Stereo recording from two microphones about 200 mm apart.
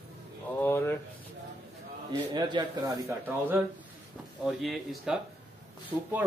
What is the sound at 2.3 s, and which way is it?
Speech, 20° right (ahead or behind).